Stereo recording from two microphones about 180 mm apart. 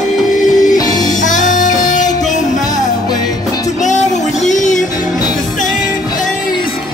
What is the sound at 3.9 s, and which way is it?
Music, 40° left (ahead or behind).